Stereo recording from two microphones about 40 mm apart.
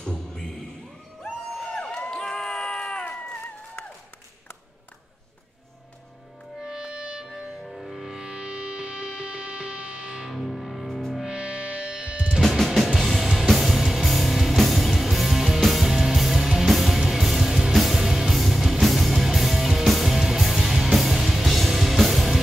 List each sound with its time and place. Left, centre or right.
0.0 s a sound: centre
1.8 s crowd: centre
6.6 s music: centre
7.6 s music: centre
8.1 s music: right
10.3 s music: centre
11.2 s music: right
12.4 s music: centre